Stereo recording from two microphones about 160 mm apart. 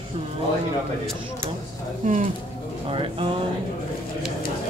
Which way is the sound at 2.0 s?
50° right (ahead or behind).